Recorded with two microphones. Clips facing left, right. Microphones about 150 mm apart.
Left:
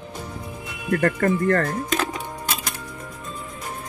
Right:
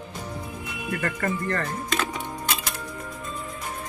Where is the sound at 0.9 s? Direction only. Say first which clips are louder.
Left 8 dB; 55° left (ahead or behind).